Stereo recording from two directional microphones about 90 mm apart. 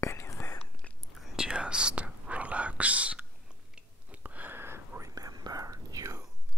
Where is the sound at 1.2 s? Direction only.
10° right (ahead or behind); by 5.1 s 25° right (ahead or behind).